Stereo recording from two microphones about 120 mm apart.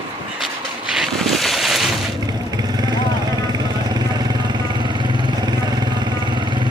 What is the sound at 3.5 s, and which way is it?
Vehicle, 35° right (ahead or behind).